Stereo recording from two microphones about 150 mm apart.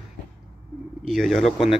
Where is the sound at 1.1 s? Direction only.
Centre (ahead or behind).